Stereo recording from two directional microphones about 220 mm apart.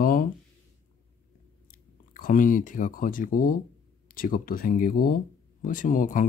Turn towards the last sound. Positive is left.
turn(degrees=35)  # may be behind; listen again after turning